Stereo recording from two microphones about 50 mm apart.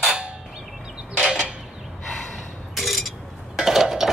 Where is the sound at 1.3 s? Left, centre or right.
Centre.